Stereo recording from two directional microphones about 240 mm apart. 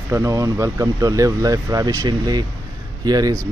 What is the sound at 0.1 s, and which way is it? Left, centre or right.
Speech, centre.